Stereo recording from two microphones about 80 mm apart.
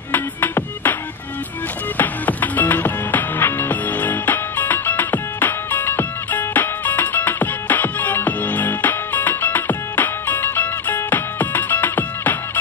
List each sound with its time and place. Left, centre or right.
0.1 s music: left
2.0 s music: left